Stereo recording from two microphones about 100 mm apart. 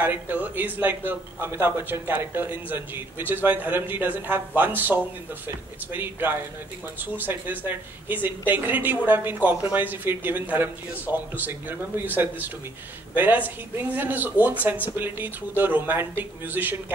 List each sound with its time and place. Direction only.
0.0 s a man's voice: 20° right (ahead or behind)
13.1 s a man's voice: 20° right (ahead or behind)